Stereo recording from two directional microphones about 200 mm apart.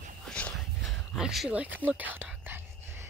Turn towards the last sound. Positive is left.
turn(degrees=-10)  # may be behind; listen again after turning